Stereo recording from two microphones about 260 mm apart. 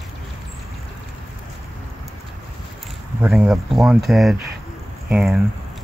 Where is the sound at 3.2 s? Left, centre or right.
Centre.